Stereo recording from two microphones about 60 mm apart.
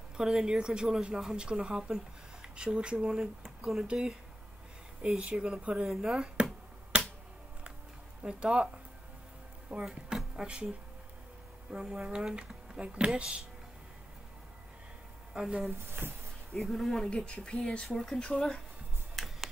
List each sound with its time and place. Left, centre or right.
0.2 s speech: centre
3.8 s speech: centre
5.9 s speech: centre
8.2 s speech: centre
9.8 s speech: centre
11.7 s speech: centre
15.3 s speech: centre
15.9 s speech: right
16.6 s speech: centre
17.1 s speech: centre
17.8 s speech: centre